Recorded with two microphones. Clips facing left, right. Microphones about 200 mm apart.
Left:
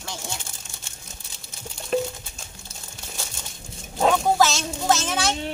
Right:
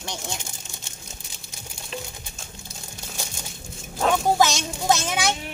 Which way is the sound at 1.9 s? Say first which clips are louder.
Left 12 dB; 50° left (ahead or behind).